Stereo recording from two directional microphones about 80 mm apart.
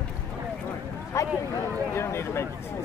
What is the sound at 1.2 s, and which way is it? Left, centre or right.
Speech, left.